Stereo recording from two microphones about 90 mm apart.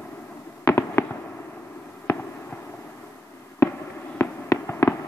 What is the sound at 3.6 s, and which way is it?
Fireworks, 35° left (ahead or behind).